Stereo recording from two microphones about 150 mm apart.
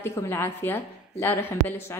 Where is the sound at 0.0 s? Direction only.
15° left (ahead or behind).